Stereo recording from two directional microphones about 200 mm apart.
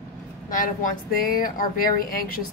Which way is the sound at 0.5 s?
45° left (ahead or behind).